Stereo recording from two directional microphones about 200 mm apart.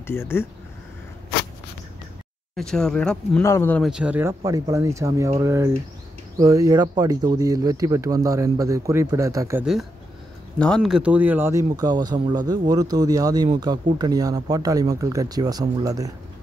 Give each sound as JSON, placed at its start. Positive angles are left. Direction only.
{"t": 0.0, "sound": "speech", "side_deg": 10}
{"t": 2.5, "sound": "speech", "side_deg": 5}
{"t": 3.9, "sound": "speech", "side_deg": -5}
{"t": 10.6, "sound": "speech", "side_deg": 0}